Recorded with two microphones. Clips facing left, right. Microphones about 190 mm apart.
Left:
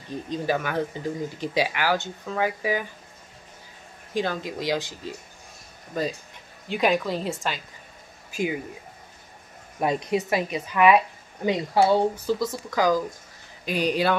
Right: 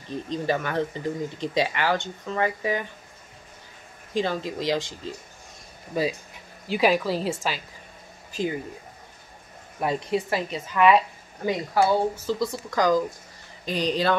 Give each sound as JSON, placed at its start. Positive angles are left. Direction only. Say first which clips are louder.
{"t": 0.3, "sound": "speech", "louder": "even", "side_deg": 5}
{"t": 4.1, "sound": "speech", "louder": "right 1 dB", "side_deg": 0}
{"t": 5.9, "sound": "speech", "louder": "right 2 dB", "side_deg": -5}
{"t": 8.3, "sound": "speech", "louder": "left 1 dB", "side_deg": 10}
{"t": 9.8, "sound": "speech", "louder": "left 1 dB", "side_deg": 20}
{"t": 11.4, "sound": "speech", "louder": "left 2 dB", "side_deg": 25}
{"t": 12.4, "sound": "speech", "louder": "even", "side_deg": 5}